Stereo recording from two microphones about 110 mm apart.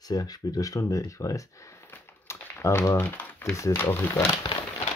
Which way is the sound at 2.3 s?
25° left (ahead or behind).